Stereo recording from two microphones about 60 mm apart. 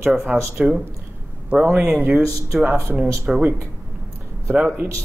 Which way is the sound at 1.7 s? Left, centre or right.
Right.